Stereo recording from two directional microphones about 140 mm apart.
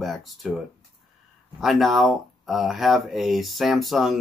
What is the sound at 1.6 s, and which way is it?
Speech, centre (ahead or behind).